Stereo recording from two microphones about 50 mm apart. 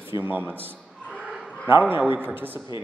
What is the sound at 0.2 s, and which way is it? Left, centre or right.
Speech, right.